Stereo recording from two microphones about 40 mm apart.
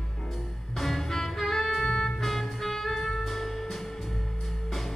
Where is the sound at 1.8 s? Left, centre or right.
Left.